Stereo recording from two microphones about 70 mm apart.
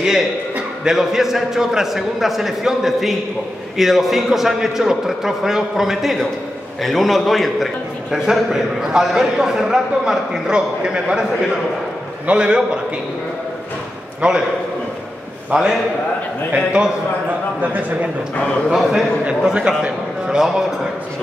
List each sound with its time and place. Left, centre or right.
0.0 s a man's voice: centre
12.3 s a man's voice: centre
14.2 s a man's voice: centre
15.5 s a man's voice: centre
18.7 s a man's voice: centre